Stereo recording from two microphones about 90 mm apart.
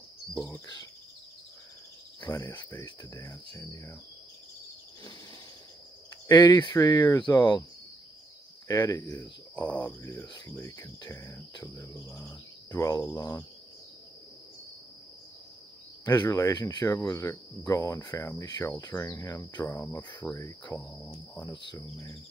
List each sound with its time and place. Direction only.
3.2 s cricket: 35° left (ahead or behind)
6.2 s speech: 45° left (ahead or behind)
8.6 s speech: 40° left (ahead or behind)
9.1 s speech: 15° left (ahead or behind)
10.2 s speech: 55° left (ahead or behind)
10.5 s cricket: 35° left (ahead or behind)
11.9 s cricket: 35° left (ahead or behind)
16.1 s speech: 45° left (ahead or behind)
17.0 s cricket: 40° left (ahead or behind)
18.1 s cricket: 25° left (ahead or behind)
18.4 s speech: 45° left (ahead or behind)
19.1 s cricket: 25° left (ahead or behind)
20.2 s cricket: 5° right (ahead or behind)
20.6 s speech: 15° left (ahead or behind)